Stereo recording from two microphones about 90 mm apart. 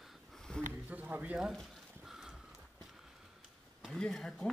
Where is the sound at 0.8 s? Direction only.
15° right (ahead or behind).